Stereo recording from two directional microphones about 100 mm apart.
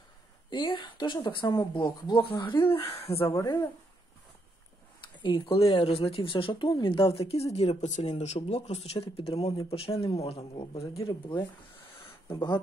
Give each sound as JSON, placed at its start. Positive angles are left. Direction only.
{"t": 0.5, "sound": "speech", "side_deg": 50}
{"t": 3.3, "sound": "speech", "side_deg": 35}
{"t": 5.1, "sound": "speech", "side_deg": 50}
{"t": 5.9, "sound": "speech", "side_deg": 75}
{"t": 12.3, "sound": "speech", "side_deg": 45}